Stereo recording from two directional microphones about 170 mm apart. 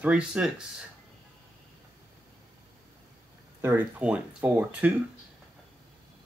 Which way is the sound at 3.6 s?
10° right (ahead or behind).